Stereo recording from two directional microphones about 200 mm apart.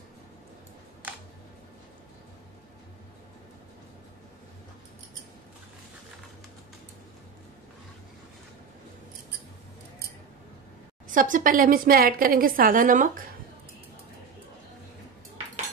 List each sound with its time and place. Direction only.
11.1 s a woman's voice: 40° right (ahead or behind)